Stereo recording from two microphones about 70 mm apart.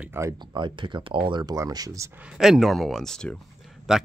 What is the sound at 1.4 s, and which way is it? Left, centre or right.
Speech, right.